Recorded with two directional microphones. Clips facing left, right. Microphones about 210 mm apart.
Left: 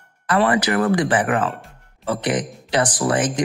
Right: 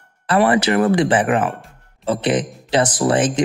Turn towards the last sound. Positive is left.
turn(degrees=-25)  # may be behind; listen again after turning